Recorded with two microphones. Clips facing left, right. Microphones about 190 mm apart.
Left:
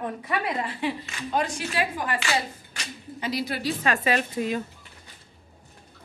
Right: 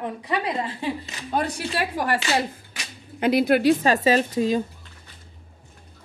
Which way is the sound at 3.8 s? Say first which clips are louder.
Right 5 dB; 35° right (ahead or behind).